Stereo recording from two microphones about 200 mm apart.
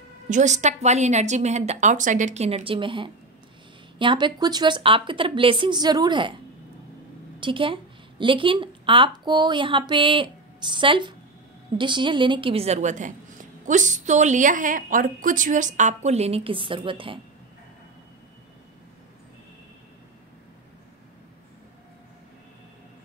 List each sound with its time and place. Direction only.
0.3 s a woman's voice: 35° right (ahead or behind)